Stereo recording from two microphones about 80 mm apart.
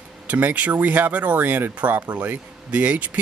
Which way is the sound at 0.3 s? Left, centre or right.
Right.